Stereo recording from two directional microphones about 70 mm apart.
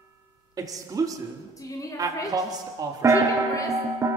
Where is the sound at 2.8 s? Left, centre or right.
Right.